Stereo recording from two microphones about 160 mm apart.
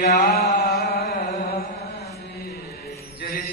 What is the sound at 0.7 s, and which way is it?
Carnatic music, 85° left.